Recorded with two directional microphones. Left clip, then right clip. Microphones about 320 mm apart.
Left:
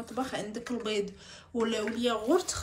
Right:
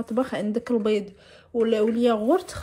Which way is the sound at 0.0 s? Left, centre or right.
Centre.